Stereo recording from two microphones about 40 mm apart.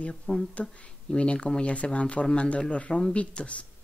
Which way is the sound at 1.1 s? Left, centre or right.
Left.